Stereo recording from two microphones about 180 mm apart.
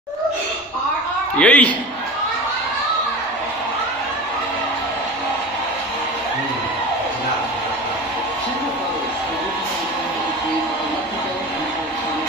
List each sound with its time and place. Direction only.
1.4 s a man's voice: 5° left (ahead or behind)